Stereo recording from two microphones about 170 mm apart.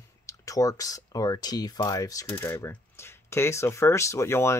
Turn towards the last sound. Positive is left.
turn(degrees=15)  # may be behind; listen again after turning